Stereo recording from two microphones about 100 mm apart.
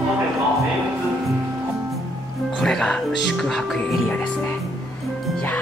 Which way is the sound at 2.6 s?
5° left (ahead or behind).